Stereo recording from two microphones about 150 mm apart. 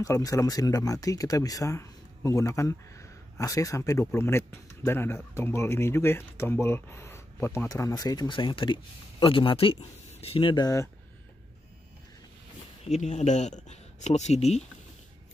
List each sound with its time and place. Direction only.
0.0 s speech: 25° left (ahead or behind)
12.8 s speech: 50° left (ahead or behind)